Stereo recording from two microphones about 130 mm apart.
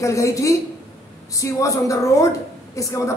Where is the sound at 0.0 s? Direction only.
25° left (ahead or behind).